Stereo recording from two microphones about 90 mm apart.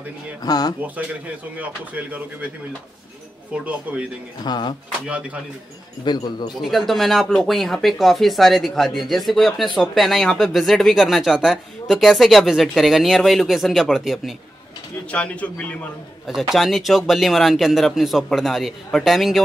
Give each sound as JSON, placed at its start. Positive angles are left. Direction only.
{"t": 0.4, "sound": "speech", "side_deg": 45}
{"t": 1.6, "sound": "speech", "side_deg": -15}
{"t": 3.5, "sound": "speech", "side_deg": -10}
{"t": 4.4, "sound": "speech", "side_deg": 55}
{"t": 5.0, "sound": "speech", "side_deg": -15}
{"t": 6.0, "sound": "speech", "side_deg": 55}
{"t": 6.6, "sound": "speech", "side_deg": 0}
{"t": 15.0, "sound": "speech", "side_deg": 15}
{"t": 16.3, "sound": "speech", "side_deg": -5}